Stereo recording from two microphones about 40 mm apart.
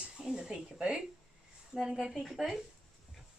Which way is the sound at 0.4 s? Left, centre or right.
Centre.